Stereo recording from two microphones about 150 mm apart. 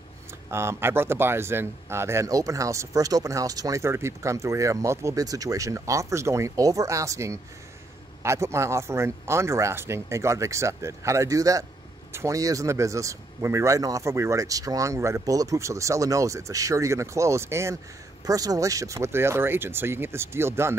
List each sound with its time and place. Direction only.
0.5 s speech: 15° right (ahead or behind)